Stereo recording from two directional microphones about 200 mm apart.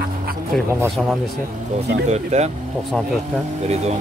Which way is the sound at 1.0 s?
5° right (ahead or behind).